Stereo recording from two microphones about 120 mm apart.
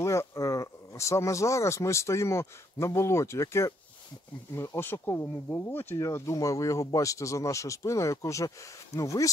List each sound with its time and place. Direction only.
0.0 s speech: 25° left (ahead or behind)